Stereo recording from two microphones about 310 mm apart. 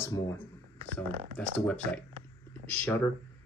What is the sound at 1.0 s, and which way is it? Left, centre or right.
Speech, right.